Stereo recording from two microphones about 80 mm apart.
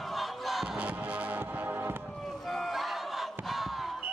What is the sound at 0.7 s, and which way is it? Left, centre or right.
Music, centre.